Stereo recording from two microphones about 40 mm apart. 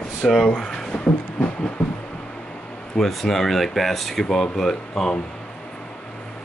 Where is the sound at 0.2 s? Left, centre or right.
Centre.